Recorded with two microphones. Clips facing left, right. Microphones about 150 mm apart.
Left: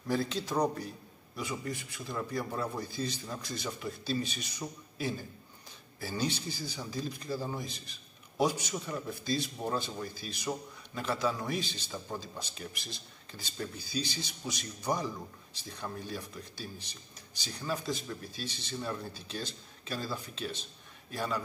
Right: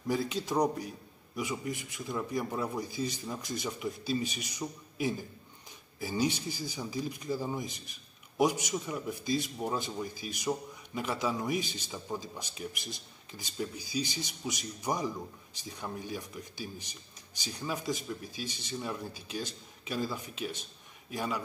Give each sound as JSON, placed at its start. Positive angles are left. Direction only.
{"t": 0.1, "sound": "a man's voice", "side_deg": -15}